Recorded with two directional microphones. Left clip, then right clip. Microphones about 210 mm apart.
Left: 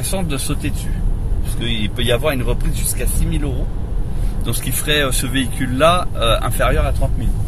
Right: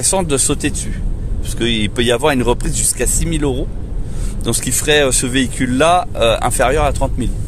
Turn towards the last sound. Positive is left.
turn(degrees=-45)  # may be behind; listen again after turning